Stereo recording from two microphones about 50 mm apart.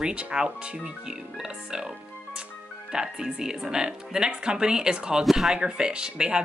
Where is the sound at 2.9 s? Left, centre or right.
Centre.